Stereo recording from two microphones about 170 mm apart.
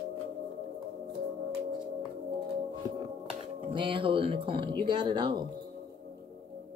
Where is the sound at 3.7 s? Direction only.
30° right (ahead or behind).